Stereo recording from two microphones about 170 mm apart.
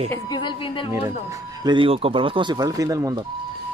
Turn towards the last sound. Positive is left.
turn(degrees=-20)  # may be behind; listen again after turning